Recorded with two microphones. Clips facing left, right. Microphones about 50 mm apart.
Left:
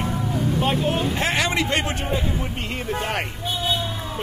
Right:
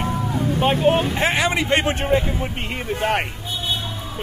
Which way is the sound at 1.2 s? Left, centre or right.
Centre.